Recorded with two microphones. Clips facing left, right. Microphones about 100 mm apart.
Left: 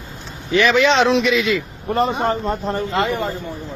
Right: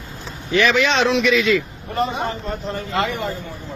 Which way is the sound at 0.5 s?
25° left (ahead or behind).